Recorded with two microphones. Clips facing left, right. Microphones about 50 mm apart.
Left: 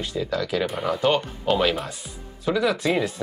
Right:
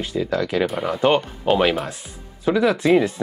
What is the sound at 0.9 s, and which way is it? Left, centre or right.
Speech, right.